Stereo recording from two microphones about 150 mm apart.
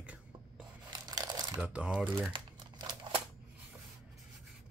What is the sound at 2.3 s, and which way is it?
Crumpling, 35° right (ahead or behind).